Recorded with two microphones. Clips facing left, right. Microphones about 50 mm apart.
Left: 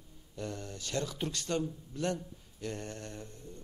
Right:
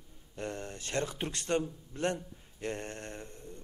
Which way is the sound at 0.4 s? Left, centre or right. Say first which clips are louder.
Right 1 dB; right.